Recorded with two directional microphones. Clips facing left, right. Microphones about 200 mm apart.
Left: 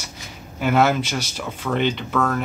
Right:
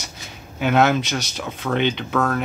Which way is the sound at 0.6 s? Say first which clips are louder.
Right 1 dB; 5° left (ahead or behind).